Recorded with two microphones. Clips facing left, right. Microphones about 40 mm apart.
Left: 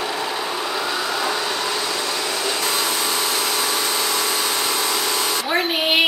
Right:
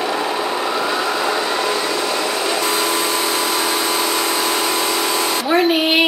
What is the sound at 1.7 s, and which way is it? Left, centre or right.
Vacuum cleaner, right.